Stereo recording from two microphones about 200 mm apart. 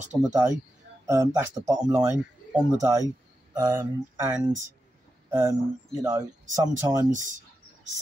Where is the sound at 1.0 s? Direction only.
15° right (ahead or behind).